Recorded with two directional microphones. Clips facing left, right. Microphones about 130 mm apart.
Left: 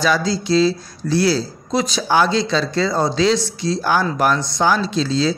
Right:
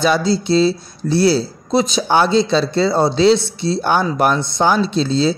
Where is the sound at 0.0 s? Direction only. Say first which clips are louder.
Right 3 dB; 25° right (ahead or behind).